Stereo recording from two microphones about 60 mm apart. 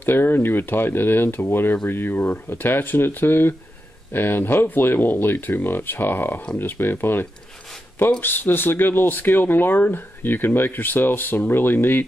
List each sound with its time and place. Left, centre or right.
0.0 s speech: left